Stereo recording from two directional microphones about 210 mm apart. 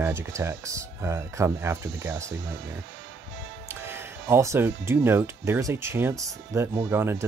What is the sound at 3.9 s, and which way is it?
Speech, 10° right (ahead or behind).